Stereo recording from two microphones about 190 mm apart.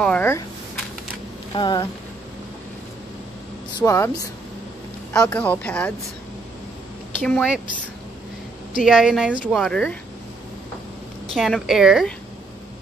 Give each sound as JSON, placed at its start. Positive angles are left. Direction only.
{"t": 0.0, "sound": "a sound", "side_deg": 10}
{"t": 1.5, "sound": "speech", "side_deg": 25}
{"t": 3.7, "sound": "a woman's voice", "side_deg": 15}
{"t": 7.2, "sound": "speech", "side_deg": 5}
{"t": 8.8, "sound": "speech", "side_deg": 0}
{"t": 11.3, "sound": "speech", "side_deg": 0}